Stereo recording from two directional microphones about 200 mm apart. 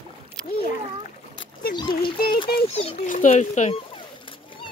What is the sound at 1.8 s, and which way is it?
Speech, 25° left (ahead or behind).